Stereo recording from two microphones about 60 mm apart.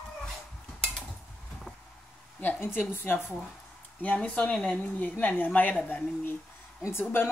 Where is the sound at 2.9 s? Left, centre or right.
Left.